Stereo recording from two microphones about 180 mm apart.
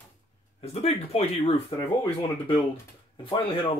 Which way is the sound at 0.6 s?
35° left (ahead or behind).